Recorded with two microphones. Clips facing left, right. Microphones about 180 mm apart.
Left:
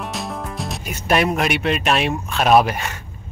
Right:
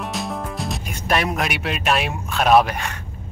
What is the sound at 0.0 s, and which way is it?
Speech, centre (ahead or behind).